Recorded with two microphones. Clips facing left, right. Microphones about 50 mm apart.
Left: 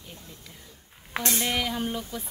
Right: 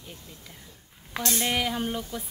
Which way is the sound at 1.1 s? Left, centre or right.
Left.